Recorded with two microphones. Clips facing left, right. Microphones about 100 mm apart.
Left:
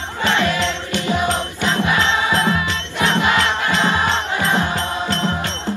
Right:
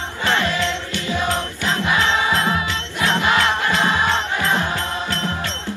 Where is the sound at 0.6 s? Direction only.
20° left (ahead or behind).